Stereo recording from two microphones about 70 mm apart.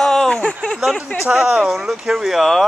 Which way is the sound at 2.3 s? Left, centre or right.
Centre.